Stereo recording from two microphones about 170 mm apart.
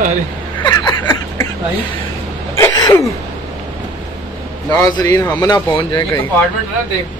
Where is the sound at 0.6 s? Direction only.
20° left (ahead or behind).